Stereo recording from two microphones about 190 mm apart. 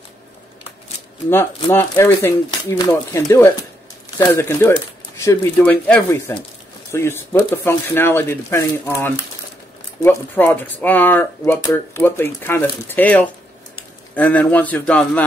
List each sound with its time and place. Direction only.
1.3 s speech: 10° left (ahead or behind)